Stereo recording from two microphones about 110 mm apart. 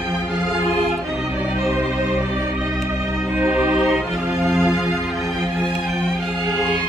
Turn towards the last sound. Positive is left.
turn(degrees=0)  # may be behind; listen again after turning